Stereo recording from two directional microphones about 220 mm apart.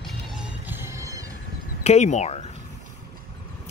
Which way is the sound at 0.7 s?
10° right (ahead or behind).